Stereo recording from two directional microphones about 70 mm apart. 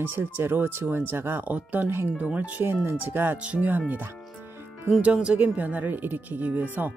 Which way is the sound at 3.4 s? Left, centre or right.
Right.